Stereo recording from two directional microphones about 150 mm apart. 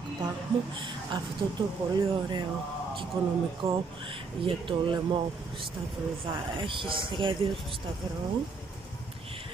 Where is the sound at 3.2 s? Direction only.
35° right (ahead or behind).